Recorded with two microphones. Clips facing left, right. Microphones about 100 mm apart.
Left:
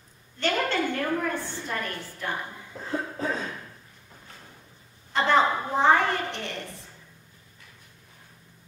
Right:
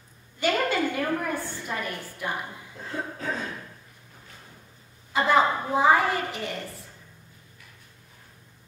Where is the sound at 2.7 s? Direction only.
35° left (ahead or behind).